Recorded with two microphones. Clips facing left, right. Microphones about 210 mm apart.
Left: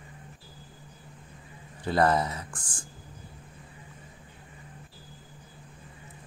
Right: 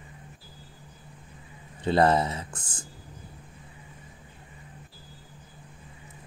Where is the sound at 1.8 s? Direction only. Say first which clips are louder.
Right 2 dB; 25° right (ahead or behind).